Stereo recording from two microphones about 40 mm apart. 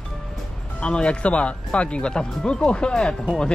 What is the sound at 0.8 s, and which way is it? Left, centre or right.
Speech, left.